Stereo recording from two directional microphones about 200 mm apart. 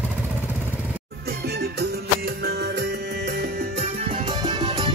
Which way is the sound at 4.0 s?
30° right (ahead or behind).